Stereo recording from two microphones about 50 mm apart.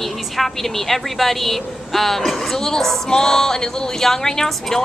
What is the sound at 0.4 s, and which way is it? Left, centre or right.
A woman's voice, centre.